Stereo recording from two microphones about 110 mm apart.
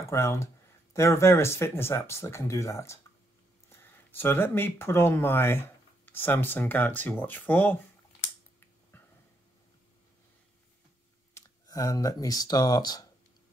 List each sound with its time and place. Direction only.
0.1 s speech: 25° left (ahead or behind)
8.9 s a sound: 15° left (ahead or behind)
11.3 s speech: 30° left (ahead or behind)